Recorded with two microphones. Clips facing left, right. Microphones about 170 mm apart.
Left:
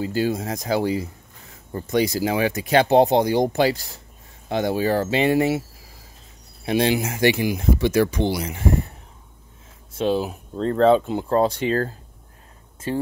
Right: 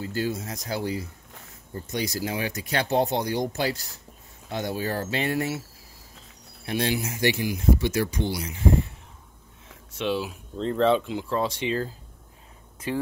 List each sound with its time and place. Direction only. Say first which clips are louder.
0.0 s speech: left 6 dB; 90° left
6.6 s speech: left 6 dB; 90° left
9.9 s speech: left 6 dB; 40° left (ahead or behind)
12.9 s speech: left 3 dB; 30° left (ahead or behind)